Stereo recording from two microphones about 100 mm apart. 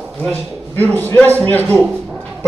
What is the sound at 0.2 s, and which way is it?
A man's voice, 20° left (ahead or behind).